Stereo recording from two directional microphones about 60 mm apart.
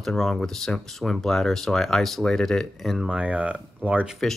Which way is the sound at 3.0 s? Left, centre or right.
Centre.